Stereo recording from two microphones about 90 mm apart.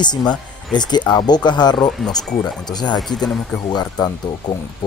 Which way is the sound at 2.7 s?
55° left (ahead or behind).